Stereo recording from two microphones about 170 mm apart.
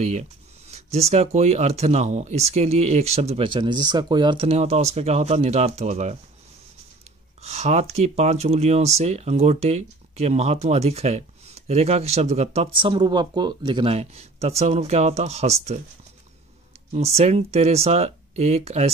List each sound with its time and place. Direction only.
0.0 s a sound: 40° right (ahead or behind)
0.9 s speech: 40° right (ahead or behind)
7.4 s speech: 40° right (ahead or behind)
17.2 s speech: 40° right (ahead or behind)